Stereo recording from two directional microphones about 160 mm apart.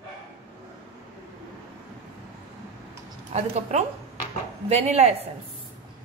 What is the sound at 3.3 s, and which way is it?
A woman's voice, 45° right (ahead or behind).